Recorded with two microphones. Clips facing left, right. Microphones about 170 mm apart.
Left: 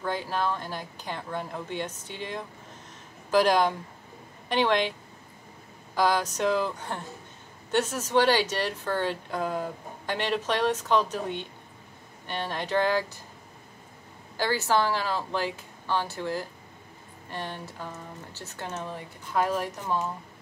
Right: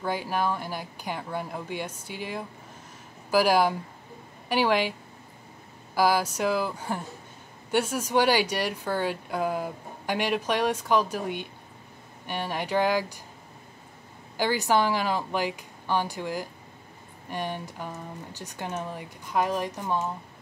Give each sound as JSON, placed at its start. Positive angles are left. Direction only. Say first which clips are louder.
{"t": 0.0, "sound": "speech", "louder": "right 1 dB", "side_deg": -10}
{"t": 5.9, "sound": "speech", "louder": "right 1 dB", "side_deg": -10}
{"t": 14.3, "sound": "speech", "louder": "right 1 dB", "side_deg": -15}